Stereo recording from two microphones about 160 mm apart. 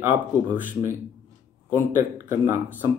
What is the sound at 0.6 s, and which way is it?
Speech, 10° right (ahead or behind).